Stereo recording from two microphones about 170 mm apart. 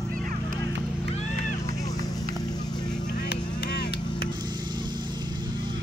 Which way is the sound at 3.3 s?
70° left (ahead or behind).